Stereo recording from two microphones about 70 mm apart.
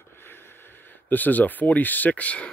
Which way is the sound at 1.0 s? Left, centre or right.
Left.